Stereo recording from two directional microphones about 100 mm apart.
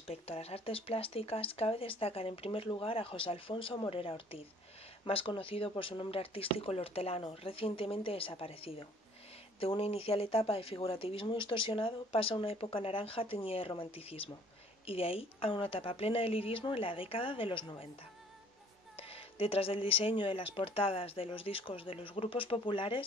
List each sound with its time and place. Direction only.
0.1 s speech: 90° left; by 17.8 s 60° left (ahead or behind)
18.9 s speech: 70° left (ahead or behind)